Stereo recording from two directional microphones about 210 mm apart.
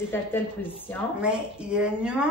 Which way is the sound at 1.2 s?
5° right (ahead or behind).